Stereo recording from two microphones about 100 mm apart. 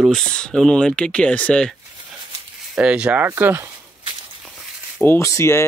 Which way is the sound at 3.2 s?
20° right (ahead or behind).